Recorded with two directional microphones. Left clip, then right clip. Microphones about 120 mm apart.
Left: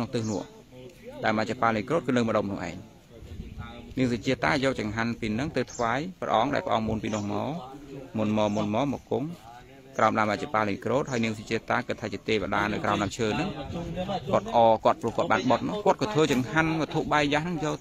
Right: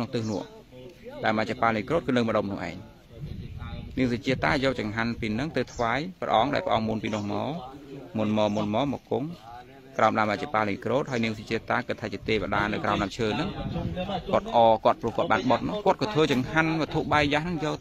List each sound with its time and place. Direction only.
0.0 s a man's voice: centre (ahead or behind)
3.9 s a man's voice: centre (ahead or behind)
9.9 s a man's voice: centre (ahead or behind)
13.6 s a man's voice: 30° right (ahead or behind)
14.5 s a man's voice: centre (ahead or behind)